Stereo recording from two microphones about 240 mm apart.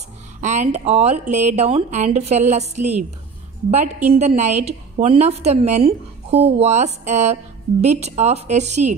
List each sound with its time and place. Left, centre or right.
0.4 s a woman's voice: right
4.1 s a woman's voice: right